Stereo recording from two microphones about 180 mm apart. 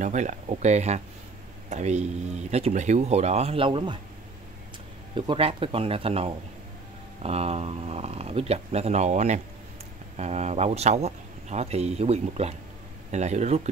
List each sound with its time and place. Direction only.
0.0 s speech: 40° right (ahead or behind)
5.1 s speech: 25° right (ahead or behind)